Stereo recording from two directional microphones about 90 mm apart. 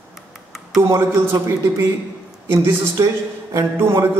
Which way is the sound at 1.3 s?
30° right (ahead or behind).